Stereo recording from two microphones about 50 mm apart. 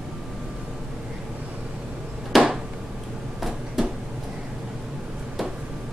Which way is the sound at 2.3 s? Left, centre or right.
Centre.